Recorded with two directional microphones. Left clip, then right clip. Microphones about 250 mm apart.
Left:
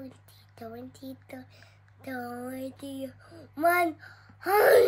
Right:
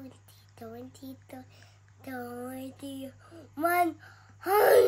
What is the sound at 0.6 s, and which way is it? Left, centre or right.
Speech, centre.